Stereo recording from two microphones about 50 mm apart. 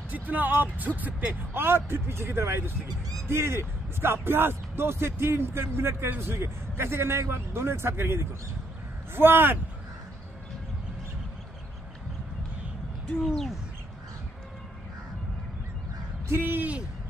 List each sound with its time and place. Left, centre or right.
0.1 s speech: right
1.5 s speech: right
13.2 s bird: centre
16.3 s speech: right